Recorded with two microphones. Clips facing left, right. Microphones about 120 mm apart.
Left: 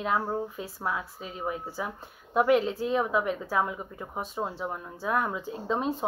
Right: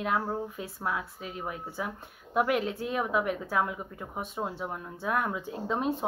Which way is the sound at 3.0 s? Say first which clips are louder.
Left 1 dB; centre (ahead or behind).